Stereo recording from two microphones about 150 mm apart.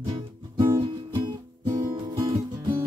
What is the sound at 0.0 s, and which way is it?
Music, 25° right (ahead or behind).